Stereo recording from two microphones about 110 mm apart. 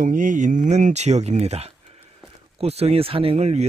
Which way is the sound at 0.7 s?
90° right.